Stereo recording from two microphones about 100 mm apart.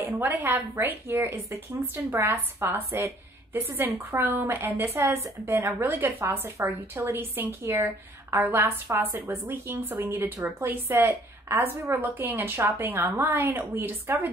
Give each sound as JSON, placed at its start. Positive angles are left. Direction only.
{"t": 0.0, "sound": "a woman's voice", "side_deg": -20}